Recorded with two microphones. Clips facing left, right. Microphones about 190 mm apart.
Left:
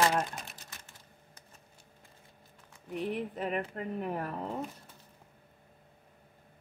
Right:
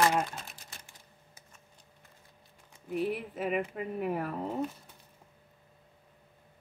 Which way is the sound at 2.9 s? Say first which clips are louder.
Right 2 dB; 5° right (ahead or behind).